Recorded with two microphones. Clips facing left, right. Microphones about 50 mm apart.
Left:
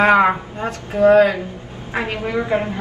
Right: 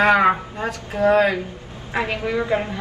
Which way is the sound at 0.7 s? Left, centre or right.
Left.